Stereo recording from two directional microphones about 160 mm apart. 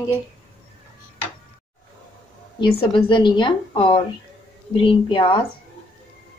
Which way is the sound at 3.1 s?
30° left (ahead or behind).